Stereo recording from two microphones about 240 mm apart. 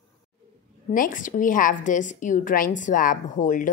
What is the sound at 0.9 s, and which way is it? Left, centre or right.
A woman's voice, left.